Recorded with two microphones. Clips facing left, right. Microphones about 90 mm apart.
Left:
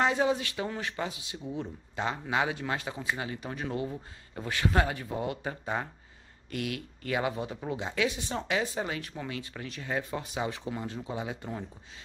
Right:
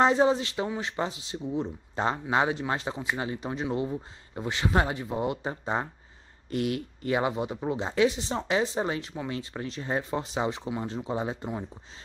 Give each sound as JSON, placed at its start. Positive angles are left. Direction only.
{"t": 0.0, "sound": "speech", "side_deg": -30}